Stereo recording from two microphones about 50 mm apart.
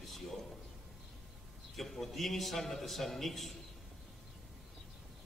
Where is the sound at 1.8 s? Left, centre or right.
Centre.